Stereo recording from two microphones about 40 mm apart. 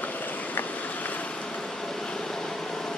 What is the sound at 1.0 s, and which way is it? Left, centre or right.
Vehicle, left.